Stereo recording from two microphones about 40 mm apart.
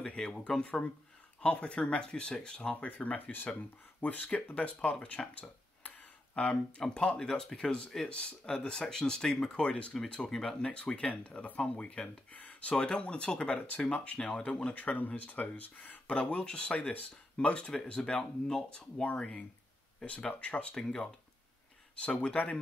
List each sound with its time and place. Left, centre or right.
0.0 s speech: centre
1.4 s speech: left
2.7 s speech: left
4.0 s speech: left
6.3 s speech: left
8.0 s speech: left
10.3 s speech: centre
11.2 s speech: left
16.1 s speech: left
19.1 s speech: left
20.7 s speech: centre
21.9 s speech: left